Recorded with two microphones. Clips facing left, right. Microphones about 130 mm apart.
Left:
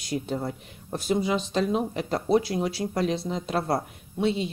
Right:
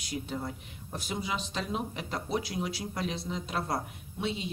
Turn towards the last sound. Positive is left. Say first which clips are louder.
# left 8 dB
turn(degrees=40)  # may be behind; listen again after turning